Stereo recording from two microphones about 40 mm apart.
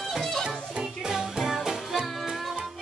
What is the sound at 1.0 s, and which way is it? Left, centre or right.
Music, centre.